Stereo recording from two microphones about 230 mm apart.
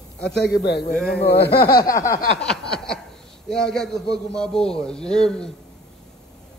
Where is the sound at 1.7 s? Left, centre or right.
Centre.